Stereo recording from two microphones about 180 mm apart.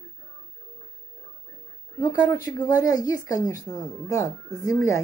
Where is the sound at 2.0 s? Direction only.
20° left (ahead or behind).